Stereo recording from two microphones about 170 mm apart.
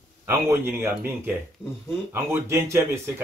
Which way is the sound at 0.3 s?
15° right (ahead or behind).